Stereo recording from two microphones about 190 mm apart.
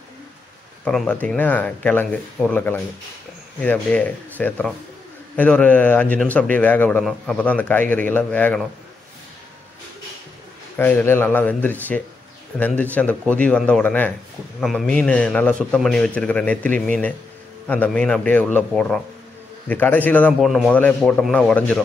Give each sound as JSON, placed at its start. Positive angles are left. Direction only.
{"t": 0.8, "sound": "a man's voice", "side_deg": 5}
{"t": 10.8, "sound": "a man's voice", "side_deg": 10}